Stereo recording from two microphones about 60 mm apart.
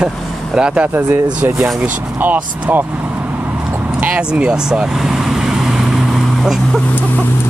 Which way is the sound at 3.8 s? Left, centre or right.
Right.